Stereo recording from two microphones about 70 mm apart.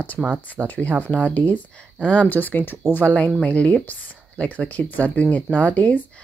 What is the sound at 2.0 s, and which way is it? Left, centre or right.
Speech, centre.